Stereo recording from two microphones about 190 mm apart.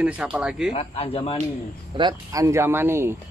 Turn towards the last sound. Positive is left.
turn(degrees=-10)  # may be behind; listen again after turning